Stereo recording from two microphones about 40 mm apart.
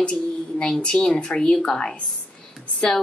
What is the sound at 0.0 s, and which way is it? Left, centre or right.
Speech, left.